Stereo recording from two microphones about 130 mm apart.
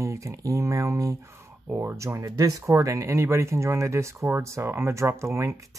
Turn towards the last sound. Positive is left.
turn(degrees=-20)  # may be behind; listen again after turning